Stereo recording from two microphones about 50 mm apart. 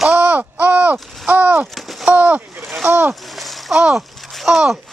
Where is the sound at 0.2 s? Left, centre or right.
Right.